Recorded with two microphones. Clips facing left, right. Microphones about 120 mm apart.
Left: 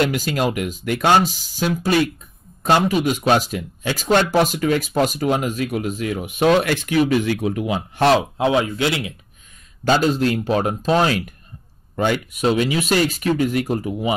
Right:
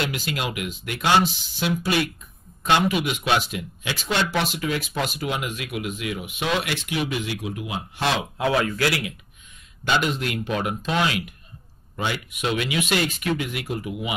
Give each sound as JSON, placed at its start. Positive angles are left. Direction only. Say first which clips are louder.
{"t": 0.0, "sound": "speech", "louder": "left 8 dB", "side_deg": 40}
{"t": 8.1, "sound": "speech", "louder": "left 5 dB", "side_deg": 25}
{"t": 9.8, "sound": "speech", "louder": "left 7 dB", "side_deg": 35}
{"t": 11.9, "sound": "speech", "louder": "left 8 dB", "side_deg": 50}